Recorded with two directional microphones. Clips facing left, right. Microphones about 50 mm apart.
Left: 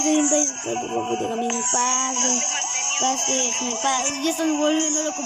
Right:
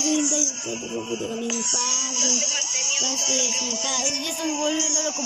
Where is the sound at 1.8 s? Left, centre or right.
Left.